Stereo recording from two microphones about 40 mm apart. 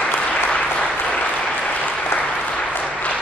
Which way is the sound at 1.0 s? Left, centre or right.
Left.